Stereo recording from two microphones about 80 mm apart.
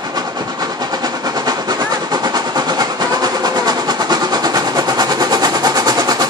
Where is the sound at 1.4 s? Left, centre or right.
Right.